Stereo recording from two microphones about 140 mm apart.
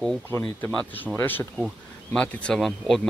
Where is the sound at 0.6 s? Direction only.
10° left (ahead or behind).